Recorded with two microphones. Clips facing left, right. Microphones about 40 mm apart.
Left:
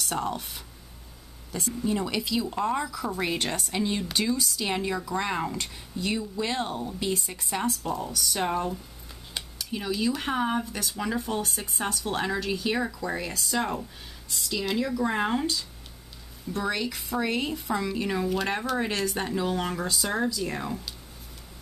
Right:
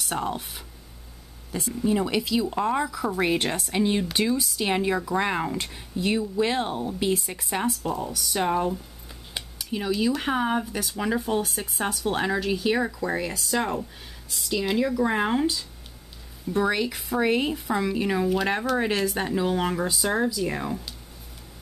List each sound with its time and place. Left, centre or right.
0.0 s speech: centre